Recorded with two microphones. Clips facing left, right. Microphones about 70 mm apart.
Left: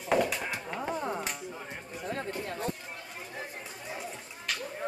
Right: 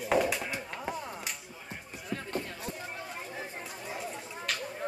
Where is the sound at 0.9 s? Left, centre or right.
Left.